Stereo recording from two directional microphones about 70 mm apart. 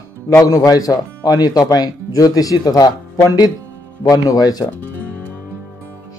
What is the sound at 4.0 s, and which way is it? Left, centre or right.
Speech, left.